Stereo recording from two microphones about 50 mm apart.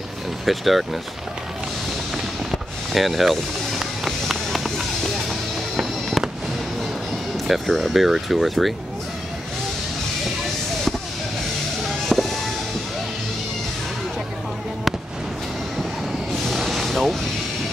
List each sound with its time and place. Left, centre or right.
0.5 s speech: centre
2.5 s a sound: centre
3.8 s run: centre
7.3 s speech: centre
12.1 s music: centre
16.4 s vehicle: centre